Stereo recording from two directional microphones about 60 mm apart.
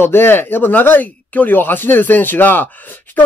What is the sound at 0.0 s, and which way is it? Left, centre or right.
Speech, left.